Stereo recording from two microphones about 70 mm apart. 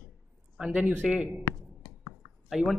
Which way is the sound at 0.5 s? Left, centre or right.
Centre.